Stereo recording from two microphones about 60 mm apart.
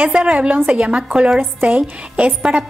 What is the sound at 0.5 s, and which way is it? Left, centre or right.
A woman's voice, right.